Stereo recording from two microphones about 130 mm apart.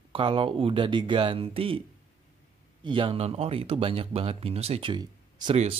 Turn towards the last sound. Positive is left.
turn(degrees=-50)  # may be behind; listen again after turning